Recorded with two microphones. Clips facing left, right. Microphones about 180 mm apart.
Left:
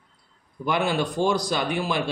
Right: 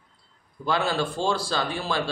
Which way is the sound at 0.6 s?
15° left (ahead or behind).